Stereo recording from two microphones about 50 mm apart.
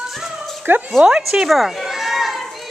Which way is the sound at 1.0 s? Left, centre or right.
Centre.